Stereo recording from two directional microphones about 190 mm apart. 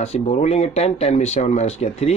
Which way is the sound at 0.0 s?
35° left (ahead or behind).